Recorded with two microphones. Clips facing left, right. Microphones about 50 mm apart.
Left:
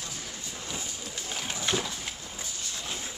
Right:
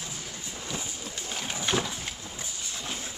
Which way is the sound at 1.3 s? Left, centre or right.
Centre.